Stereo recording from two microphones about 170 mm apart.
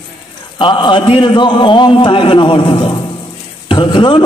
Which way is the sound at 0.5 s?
30° left (ahead or behind).